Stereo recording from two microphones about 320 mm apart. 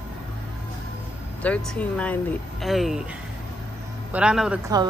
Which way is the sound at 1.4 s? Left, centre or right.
Centre.